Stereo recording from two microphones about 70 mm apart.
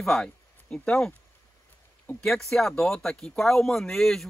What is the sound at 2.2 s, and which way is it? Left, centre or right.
Speech, centre.